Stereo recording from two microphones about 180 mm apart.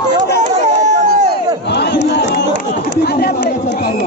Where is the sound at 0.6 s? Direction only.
40° right (ahead or behind).